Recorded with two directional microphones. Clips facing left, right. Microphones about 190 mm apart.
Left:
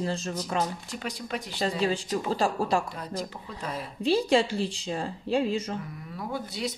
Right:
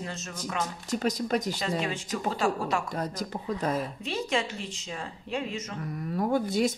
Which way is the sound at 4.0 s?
30° left (ahead or behind).